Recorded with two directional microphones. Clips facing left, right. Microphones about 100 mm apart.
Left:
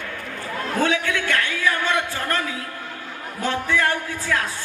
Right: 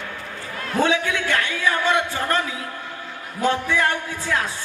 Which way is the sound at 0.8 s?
25° right (ahead or behind).